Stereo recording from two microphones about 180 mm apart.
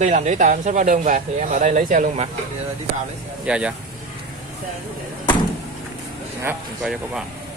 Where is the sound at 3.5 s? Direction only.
5° right (ahead or behind).